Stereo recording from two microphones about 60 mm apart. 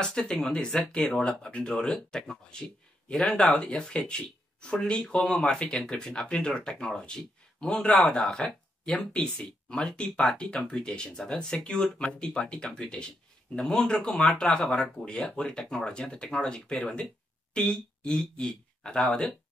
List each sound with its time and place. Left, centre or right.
0.0 s speech: centre